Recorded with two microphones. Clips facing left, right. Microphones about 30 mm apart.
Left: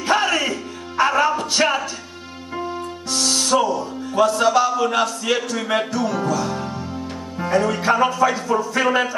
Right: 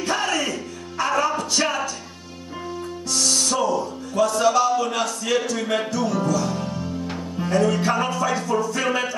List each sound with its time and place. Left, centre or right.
0.0 s music: left
3.1 s music: left
4.9 s a sound: left
5.7 s music: left